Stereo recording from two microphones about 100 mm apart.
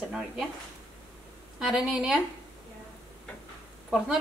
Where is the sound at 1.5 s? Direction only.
5° right (ahead or behind).